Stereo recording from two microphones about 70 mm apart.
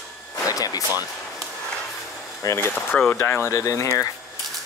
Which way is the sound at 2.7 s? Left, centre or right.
Left.